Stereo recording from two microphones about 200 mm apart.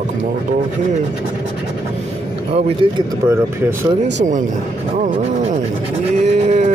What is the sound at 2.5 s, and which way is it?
Speech, 30° right (ahead or behind).